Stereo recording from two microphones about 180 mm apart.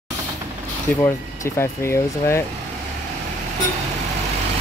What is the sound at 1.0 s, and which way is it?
Speech, 15° left (ahead or behind).